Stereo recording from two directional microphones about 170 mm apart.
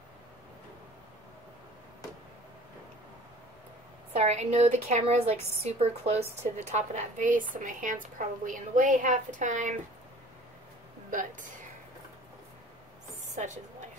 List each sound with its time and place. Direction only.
4.1 s a woman's voice: 40° right (ahead or behind)
11.1 s a woman's voice: 50° right (ahead or behind)